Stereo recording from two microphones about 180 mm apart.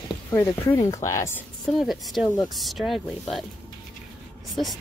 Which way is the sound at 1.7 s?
Centre (ahead or behind).